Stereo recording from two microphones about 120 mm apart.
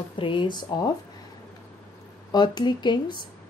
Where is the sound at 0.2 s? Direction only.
45° left (ahead or behind).